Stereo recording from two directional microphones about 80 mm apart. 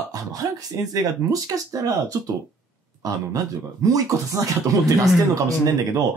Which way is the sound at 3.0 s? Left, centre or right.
Right.